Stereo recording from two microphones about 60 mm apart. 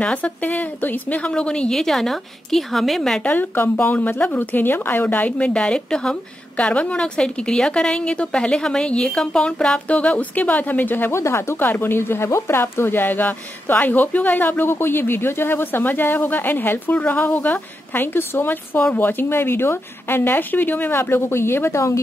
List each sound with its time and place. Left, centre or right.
0.0 s a woman's voice: left
1.7 s a woman's voice: centre
3.3 s speech: left
5.0 s a woman's voice: left
9.8 s a woman's voice: left
11.1 s speech: left